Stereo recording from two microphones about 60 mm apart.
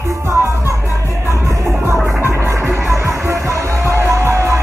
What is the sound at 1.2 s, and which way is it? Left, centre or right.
Music, right.